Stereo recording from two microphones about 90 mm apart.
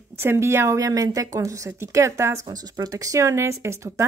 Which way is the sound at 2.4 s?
45° right (ahead or behind).